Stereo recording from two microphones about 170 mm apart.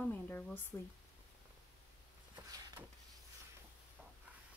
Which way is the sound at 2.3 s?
25° right (ahead or behind).